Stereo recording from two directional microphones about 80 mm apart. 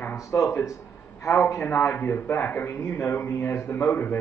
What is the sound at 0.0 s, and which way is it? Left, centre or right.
A man's voice, left.